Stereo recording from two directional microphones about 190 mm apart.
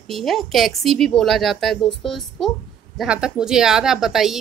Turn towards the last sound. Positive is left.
turn(degrees=0)  # may be behind; listen again after turning